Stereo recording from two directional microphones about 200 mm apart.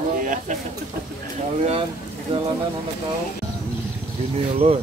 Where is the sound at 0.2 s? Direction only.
40° right (ahead or behind).